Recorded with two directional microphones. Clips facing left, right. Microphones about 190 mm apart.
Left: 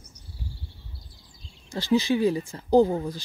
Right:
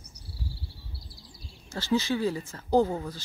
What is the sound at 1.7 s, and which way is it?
Speech, 15° left (ahead or behind).